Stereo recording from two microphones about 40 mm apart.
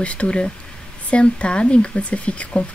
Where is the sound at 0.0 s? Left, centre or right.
Left.